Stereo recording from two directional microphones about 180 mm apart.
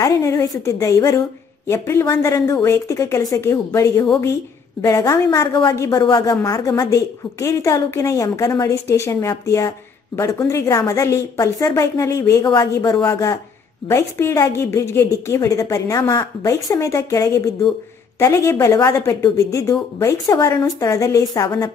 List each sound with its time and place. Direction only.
0.0 s a woman's voice: 20° left (ahead or behind)